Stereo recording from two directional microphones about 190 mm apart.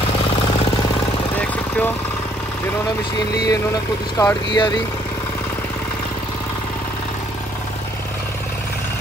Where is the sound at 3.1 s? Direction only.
20° left (ahead or behind).